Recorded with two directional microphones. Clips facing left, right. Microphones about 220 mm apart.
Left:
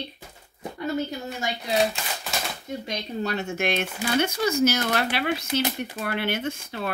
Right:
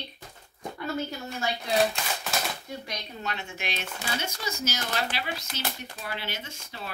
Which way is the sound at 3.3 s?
40° left (ahead or behind).